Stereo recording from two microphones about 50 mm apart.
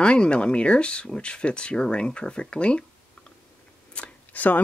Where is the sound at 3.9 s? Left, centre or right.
Left.